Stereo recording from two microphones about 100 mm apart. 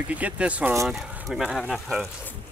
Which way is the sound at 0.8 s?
5° right (ahead or behind).